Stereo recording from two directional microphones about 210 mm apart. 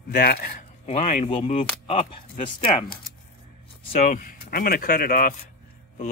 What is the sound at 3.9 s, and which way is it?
A man's voice, 35° left (ahead or behind).